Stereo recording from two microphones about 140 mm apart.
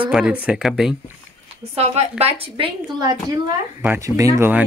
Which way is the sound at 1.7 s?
45° right (ahead or behind).